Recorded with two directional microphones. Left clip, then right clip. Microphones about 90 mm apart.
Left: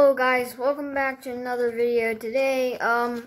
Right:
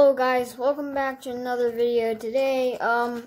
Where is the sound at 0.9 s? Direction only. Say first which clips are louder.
Left 1 dB; 20° right (ahead or behind).